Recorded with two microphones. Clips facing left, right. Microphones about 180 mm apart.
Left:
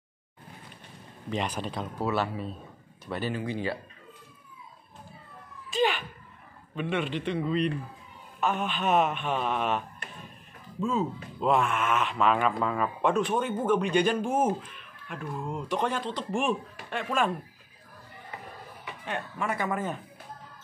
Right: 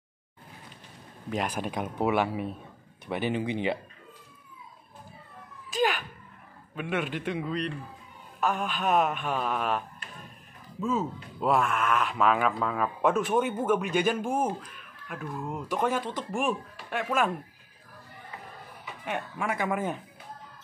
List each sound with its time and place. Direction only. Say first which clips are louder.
1.3 s speech: right 1 dB; 10° right (ahead or behind)
6.7 s speech: left 1 dB; 5° right (ahead or behind)
19.0 s speech: right 1 dB; 10° right (ahead or behind)